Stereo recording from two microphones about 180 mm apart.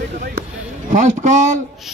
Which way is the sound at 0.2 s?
50° right (ahead or behind).